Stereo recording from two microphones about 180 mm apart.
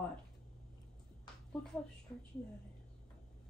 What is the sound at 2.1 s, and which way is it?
Speech, 10° left (ahead or behind).